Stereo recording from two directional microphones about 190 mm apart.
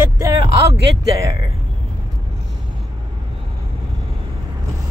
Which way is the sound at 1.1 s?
15° right (ahead or behind).